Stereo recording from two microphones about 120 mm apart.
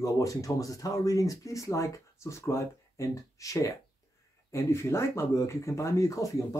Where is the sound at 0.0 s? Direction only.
30° left (ahead or behind).